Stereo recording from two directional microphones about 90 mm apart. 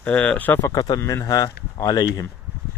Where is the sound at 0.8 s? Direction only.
50° left (ahead or behind).